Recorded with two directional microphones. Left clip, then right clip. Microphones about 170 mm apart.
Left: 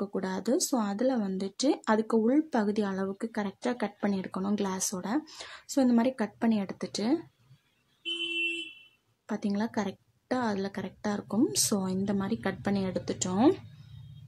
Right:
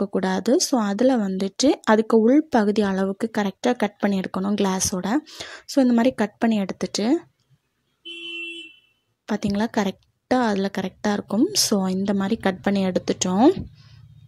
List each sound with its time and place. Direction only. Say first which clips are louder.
0.0 s speech: right 10 dB; 35° right (ahead or behind)
5.2 s speech: right 8 dB; 20° right (ahead or behind)
9.2 s speech: right 8 dB; 35° right (ahead or behind)